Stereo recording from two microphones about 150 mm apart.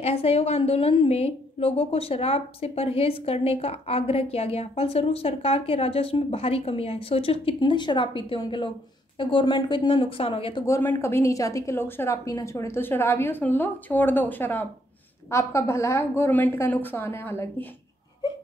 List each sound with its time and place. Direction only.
0.0 s a woman's voice: 40° left (ahead or behind)
10.6 s a woman's voice: 15° left (ahead or behind)